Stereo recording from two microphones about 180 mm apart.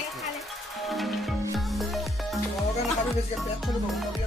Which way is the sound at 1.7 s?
Centre (ahead or behind).